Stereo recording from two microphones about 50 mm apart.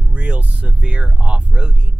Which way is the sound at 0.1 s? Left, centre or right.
Right.